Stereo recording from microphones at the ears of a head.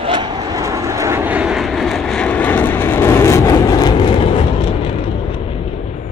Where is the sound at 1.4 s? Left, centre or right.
Left.